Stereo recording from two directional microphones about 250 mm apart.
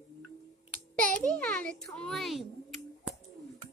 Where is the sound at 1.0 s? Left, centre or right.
Centre.